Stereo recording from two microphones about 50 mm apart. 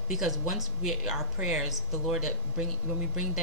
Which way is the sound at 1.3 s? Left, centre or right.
Centre.